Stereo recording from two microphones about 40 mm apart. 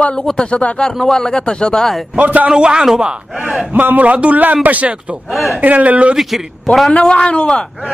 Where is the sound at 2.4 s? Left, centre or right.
Right.